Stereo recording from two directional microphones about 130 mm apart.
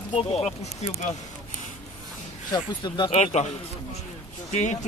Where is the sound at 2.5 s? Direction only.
35° left (ahead or behind).